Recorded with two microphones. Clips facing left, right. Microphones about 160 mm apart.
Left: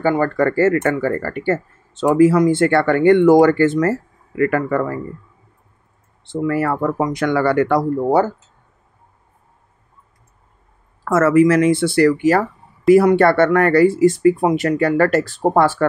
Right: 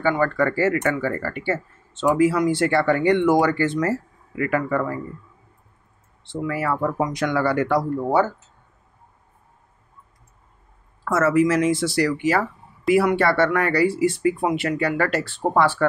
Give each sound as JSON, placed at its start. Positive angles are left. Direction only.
{"t": 0.0, "sound": "speech", "side_deg": 40}
{"t": 6.2, "sound": "speech", "side_deg": 45}
{"t": 11.1, "sound": "speech", "side_deg": 50}